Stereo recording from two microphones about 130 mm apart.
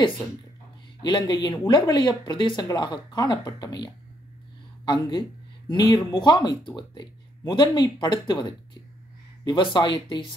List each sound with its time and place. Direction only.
1.0 s speech: 30° left (ahead or behind)